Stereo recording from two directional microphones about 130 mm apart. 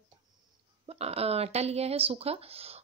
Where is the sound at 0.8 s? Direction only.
50° right (ahead or behind).